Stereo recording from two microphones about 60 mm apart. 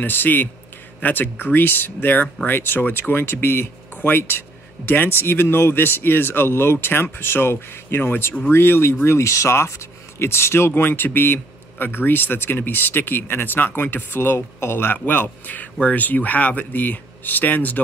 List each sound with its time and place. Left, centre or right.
0.0 s speech: left
9.0 s speech: left